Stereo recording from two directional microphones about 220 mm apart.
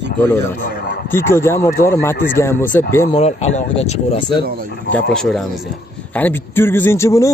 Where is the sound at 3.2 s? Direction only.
30° left (ahead or behind).